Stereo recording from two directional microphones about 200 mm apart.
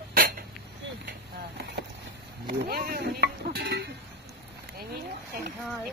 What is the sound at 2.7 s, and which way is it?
Speech, 50° right (ahead or behind).